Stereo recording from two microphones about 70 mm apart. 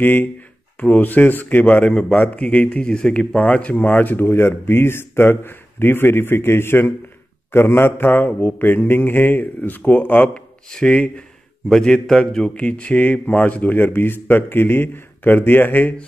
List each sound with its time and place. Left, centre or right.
0.0 s speech: left
10.2 s speech: centre; by 16.1 s left